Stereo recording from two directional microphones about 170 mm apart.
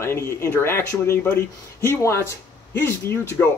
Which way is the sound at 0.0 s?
15° left (ahead or behind).